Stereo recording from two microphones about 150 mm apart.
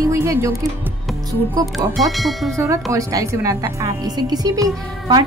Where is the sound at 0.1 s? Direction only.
20° right (ahead or behind).